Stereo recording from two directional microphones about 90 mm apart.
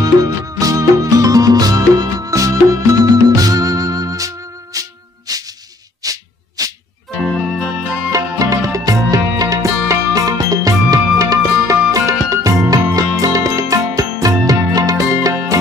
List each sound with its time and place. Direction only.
0.0 s music: 45° right (ahead or behind)
6.0 s a sound: 40° right (ahead or behind)
8.1 s music: 40° right (ahead or behind)